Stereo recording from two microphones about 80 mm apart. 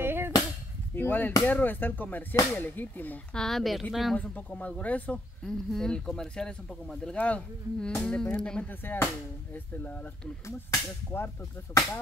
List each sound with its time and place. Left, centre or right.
0.0 s cap gun: right
0.9 s chop: left
1.5 s speech: left
3.3 s speech: centre
4.2 s speech: centre
8.6 s speech: left
10.4 s whip: left